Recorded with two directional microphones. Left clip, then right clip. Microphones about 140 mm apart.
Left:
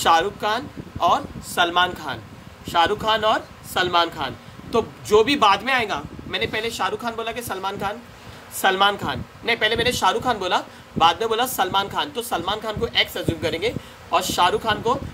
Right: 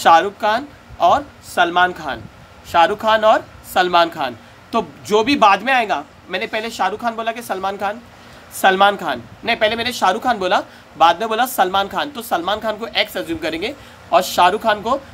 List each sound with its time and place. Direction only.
0.0 s speech: 90° right; by 2.1 s 70° right (ahead or behind)
2.6 s speech: 90° right